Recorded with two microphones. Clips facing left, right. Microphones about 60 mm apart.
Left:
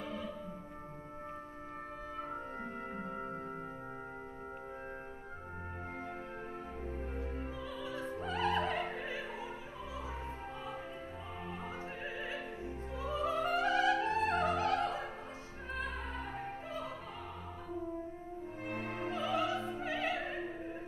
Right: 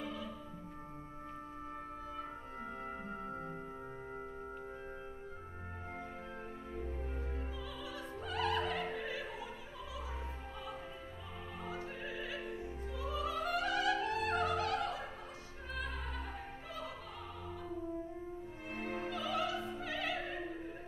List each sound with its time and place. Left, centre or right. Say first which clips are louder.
7.8 s opera: left 6 dB; left
11.6 s opera: left 1 dB; left
16.3 s opera: left 4 dB; left
18.9 s music: left 2 dB; left